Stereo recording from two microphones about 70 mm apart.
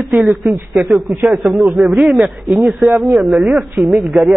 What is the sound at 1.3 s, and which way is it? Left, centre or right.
A man's voice, centre.